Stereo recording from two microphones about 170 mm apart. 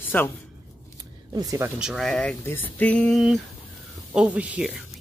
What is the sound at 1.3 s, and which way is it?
Speech, 20° right (ahead or behind).